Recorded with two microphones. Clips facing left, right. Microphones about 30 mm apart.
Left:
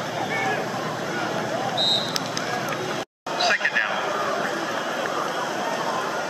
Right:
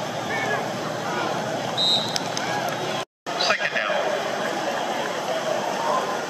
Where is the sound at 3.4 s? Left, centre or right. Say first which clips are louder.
Left 2 dB; centre.